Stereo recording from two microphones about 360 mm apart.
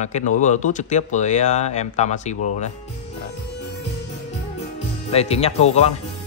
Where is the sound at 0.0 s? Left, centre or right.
Centre.